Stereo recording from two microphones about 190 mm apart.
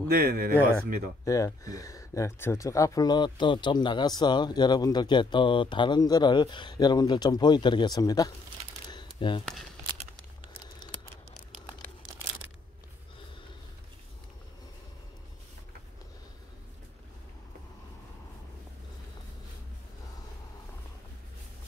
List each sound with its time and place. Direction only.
0.1 s speech: 50° right (ahead or behind)
1.2 s speech: 15° left (ahead or behind)
8.9 s a sound: 25° left (ahead or behind)